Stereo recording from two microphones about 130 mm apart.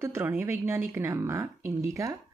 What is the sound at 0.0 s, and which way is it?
Speech, 20° right (ahead or behind).